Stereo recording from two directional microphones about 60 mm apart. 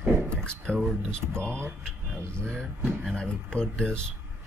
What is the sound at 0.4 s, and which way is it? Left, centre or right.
Speech, centre.